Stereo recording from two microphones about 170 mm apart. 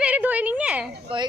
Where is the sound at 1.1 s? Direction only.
30° right (ahead or behind).